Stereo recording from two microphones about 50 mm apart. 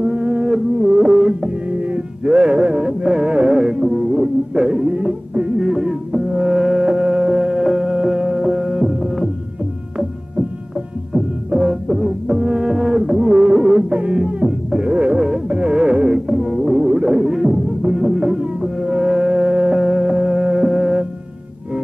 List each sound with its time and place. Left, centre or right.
0.0 s a sound: centre
1.7 s music: right
5.6 s music: centre
6.1 s music: right
6.5 s music: centre
11.1 s music: centre